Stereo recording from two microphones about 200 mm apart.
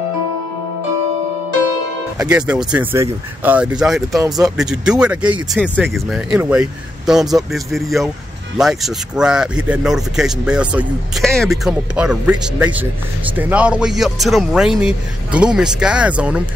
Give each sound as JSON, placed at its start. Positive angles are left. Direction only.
{"t": 2.1, "sound": "speech", "side_deg": -5}